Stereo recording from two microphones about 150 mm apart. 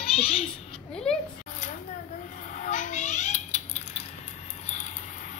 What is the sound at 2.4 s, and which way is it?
Cat, 60° left (ahead or behind).